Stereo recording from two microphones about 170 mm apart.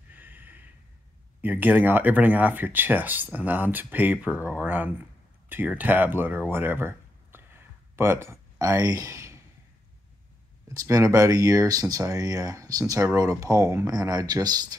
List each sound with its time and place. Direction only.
0.1 s gasp: 10° right (ahead or behind)
1.4 s speech: 10° right (ahead or behind)
6.5 s a sound: 10° right (ahead or behind)
10.7 s speech: 20° right (ahead or behind)